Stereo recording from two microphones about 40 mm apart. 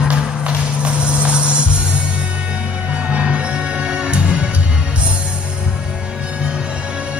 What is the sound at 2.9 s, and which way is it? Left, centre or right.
Music, right.